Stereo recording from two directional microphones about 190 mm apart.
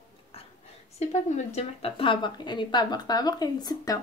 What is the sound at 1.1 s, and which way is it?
A woman's voice, 35° left (ahead or behind).